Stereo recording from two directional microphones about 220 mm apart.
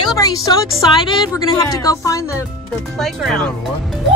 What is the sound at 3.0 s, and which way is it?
Speech, centre (ahead or behind).